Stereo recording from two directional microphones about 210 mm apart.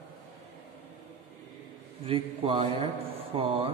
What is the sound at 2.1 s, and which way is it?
A man's voice, 25° right (ahead or behind).